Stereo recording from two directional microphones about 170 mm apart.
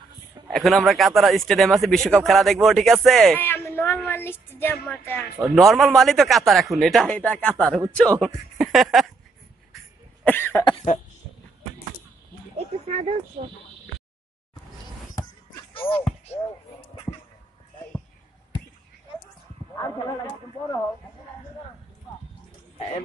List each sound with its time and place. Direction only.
0.5 s speech: centre (ahead or behind)
3.3 s speech: 10° left (ahead or behind)
5.5 s speech: centre (ahead or behind)
10.2 s cough: 10° left (ahead or behind)
10.6 s cough: 25° left (ahead or behind)
12.5 s a sound: 40° right (ahead or behind)
15.7 s basketball bounce: 30° left (ahead or behind)
19.7 s a sound: 20° left (ahead or behind)